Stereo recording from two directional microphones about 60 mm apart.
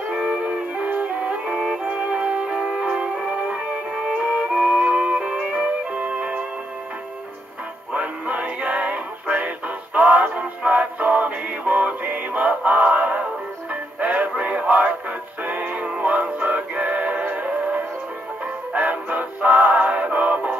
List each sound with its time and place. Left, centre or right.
0.1 s music: centre
7.9 s music: right